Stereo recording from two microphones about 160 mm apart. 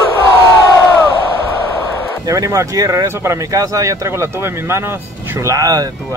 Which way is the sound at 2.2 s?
20° right (ahead or behind).